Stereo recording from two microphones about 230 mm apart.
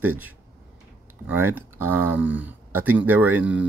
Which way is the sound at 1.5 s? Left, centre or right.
Centre.